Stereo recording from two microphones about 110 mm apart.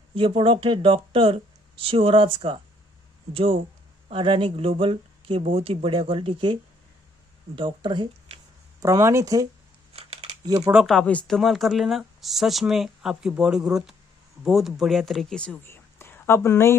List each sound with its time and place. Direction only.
0.1 s speech: 55° right (ahead or behind)
4.1 s speech: 50° right (ahead or behind)
8.8 s speech: 25° right (ahead or behind)
9.9 s scissors: 70° right (ahead or behind)
10.4 s speech: 30° right (ahead or behind)
10.7 s speech: 5° right (ahead or behind)
11.0 s speech: 10° left (ahead or behind)
15.6 s a sound: 20° left (ahead or behind)